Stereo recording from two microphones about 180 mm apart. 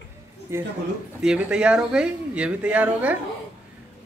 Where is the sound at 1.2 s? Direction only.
5° right (ahead or behind).